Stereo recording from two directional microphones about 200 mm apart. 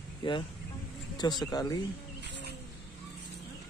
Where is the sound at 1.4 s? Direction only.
20° left (ahead or behind).